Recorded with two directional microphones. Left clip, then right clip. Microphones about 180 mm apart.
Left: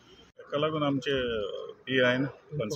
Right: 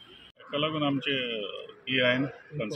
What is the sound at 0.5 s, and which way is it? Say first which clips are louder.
A man's voice: even; 10° left (ahead or behind).